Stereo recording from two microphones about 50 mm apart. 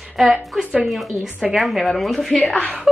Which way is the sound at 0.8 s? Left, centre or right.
Centre.